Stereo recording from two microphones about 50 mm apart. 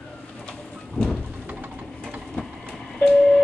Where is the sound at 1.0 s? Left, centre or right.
Centre.